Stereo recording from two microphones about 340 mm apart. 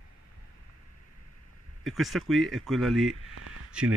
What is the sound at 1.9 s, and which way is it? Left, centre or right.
Speech, centre.